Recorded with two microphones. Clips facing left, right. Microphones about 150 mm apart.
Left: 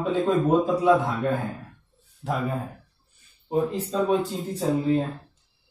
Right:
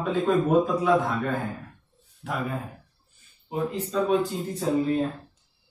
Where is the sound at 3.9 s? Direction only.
25° left (ahead or behind).